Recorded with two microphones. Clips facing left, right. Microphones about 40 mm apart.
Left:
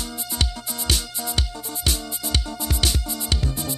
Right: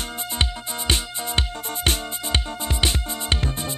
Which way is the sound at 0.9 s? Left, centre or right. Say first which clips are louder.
Right 2 dB; right.